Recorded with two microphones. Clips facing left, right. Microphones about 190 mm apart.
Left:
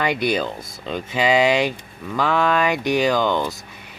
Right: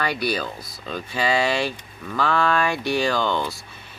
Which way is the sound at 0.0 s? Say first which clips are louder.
Left 4 dB; 20° left (ahead or behind).